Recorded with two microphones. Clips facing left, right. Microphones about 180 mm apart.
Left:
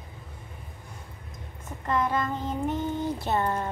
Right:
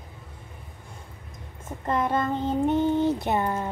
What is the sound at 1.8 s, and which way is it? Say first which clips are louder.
Child singing: right 2 dB; 25° right (ahead or behind).